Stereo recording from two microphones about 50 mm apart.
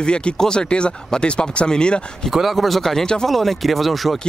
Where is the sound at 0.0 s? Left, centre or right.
Centre.